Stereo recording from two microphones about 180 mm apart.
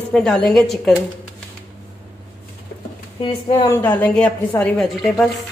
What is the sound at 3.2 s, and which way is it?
Speech, 30° left (ahead or behind).